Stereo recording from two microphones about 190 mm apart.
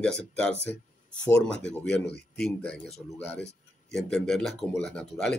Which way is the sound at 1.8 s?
65° left (ahead or behind).